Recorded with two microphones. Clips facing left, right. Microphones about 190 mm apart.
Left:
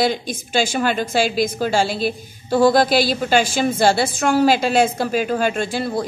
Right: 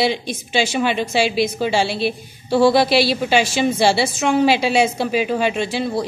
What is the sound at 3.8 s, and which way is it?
Speech, 50° left (ahead or behind).